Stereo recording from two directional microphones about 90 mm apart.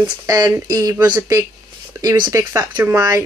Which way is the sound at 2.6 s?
25° right (ahead or behind).